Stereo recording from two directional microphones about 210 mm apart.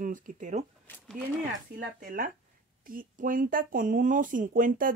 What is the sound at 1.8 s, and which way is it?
Speech, 40° right (ahead or behind).